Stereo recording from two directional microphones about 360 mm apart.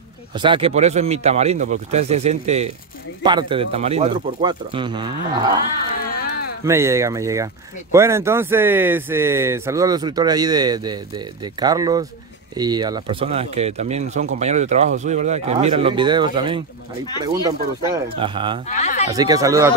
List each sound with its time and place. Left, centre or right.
0.4 s speech: centre
6.6 s speech: centre
18.7 s speech: centre
19.1 s speech: centre